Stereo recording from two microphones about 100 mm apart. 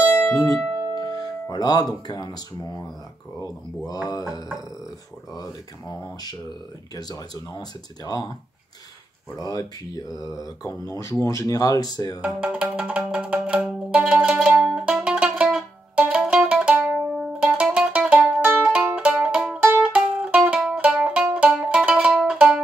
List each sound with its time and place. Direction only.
0.9 s speech: 40° left (ahead or behind)
5.3 s speech: 35° left (ahead or behind)
9.4 s speech: 40° left (ahead or behind)
12.4 s music: 10° right (ahead or behind)